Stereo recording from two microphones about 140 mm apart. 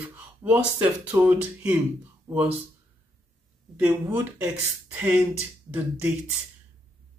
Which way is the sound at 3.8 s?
15° right (ahead or behind).